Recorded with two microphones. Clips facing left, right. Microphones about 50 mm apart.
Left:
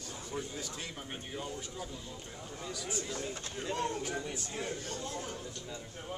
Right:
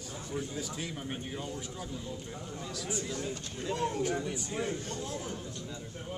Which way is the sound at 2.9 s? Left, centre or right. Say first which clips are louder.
Right 3 dB; centre.